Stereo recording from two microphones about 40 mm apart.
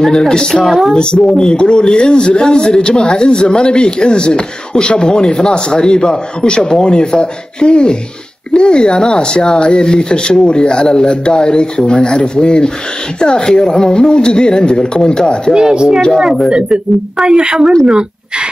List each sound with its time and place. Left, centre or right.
0.0 s a man's voice: centre
15.5 s speech: centre
17.8 s a sound: right